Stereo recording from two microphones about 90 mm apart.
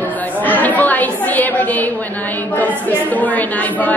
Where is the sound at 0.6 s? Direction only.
20° left (ahead or behind).